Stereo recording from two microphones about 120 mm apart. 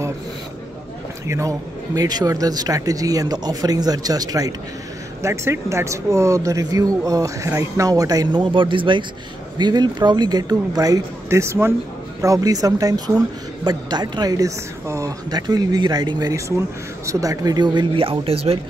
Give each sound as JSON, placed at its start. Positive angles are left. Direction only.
{"t": 1.2, "sound": "speech", "side_deg": -25}